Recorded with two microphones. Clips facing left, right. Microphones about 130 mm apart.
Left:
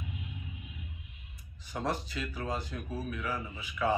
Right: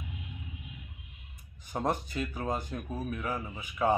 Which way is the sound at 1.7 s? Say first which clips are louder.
Right 3 dB; 45° right (ahead or behind).